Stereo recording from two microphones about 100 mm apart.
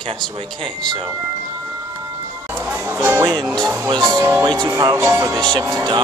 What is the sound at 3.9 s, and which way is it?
Speech, 40° right (ahead or behind).